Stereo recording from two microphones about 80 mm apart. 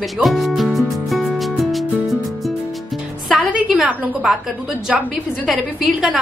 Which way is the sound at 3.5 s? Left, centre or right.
Centre.